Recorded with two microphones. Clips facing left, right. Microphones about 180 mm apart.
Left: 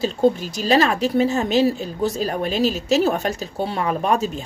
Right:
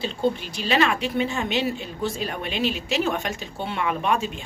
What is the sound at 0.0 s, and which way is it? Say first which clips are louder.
Speech: left 6 dB; 40° left (ahead or behind).